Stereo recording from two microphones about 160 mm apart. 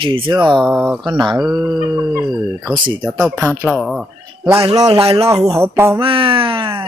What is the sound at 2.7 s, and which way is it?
Speech, 30° right (ahead or behind).